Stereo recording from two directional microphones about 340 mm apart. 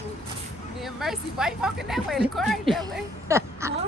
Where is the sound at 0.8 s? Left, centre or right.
Centre.